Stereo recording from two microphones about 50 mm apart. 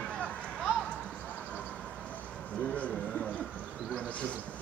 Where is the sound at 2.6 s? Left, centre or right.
Left.